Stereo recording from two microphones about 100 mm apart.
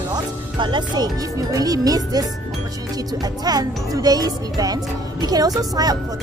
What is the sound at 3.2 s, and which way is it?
Speech, 40° right (ahead or behind).